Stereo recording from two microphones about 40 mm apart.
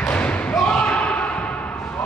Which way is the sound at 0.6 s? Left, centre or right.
Left.